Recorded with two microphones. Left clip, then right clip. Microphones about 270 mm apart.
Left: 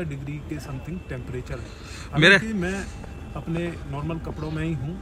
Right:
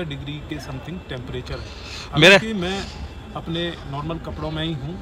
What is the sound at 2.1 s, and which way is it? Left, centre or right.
Speech, centre.